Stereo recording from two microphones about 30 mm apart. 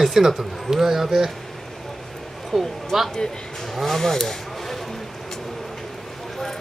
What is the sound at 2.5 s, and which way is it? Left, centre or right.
Speech, centre.